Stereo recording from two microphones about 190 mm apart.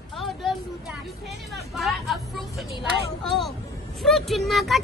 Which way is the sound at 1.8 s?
Centre (ahead or behind).